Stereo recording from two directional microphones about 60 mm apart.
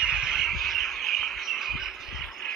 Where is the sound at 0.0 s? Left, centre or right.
Centre.